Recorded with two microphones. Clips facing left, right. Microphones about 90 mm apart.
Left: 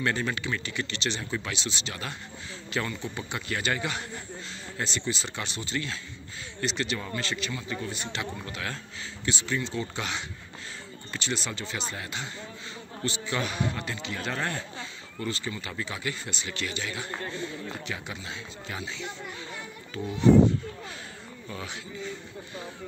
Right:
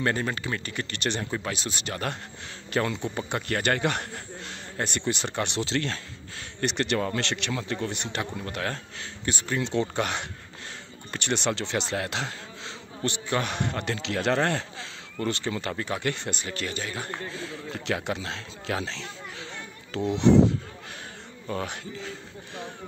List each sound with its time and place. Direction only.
0.0 s speech: 35° right (ahead or behind); by 1.2 s 50° right (ahead or behind)
1.3 s speech: 40° right (ahead or behind)
2.8 s speech: 40° right (ahead or behind)
3.2 s speech: 50° right (ahead or behind); by 5.9 s 75° right (ahead or behind)
6.6 s a man's voice: 60° right (ahead or behind)
8.2 s speech: 45° right (ahead or behind)
9.6 s a man's voice: 65° right (ahead or behind); by 12.3 s 80° right
13.0 s a man's voice: 60° right (ahead or behind)
15.1 s speech: 65° right (ahead or behind)
15.7 s speech: 50° right (ahead or behind)
16.4 s speech: 40° right (ahead or behind)
17.8 s a man's voice: 70° right (ahead or behind)
21.5 s speech: 55° right (ahead or behind)